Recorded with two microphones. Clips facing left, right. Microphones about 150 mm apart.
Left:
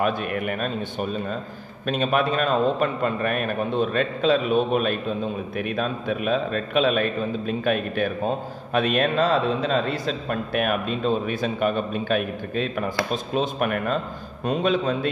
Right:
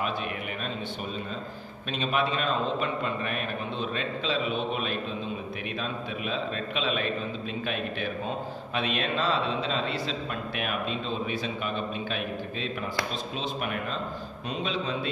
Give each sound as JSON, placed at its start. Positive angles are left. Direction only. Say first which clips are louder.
{"t": 0.0, "sound": "a man's voice", "louder": "left 7 dB", "side_deg": 55}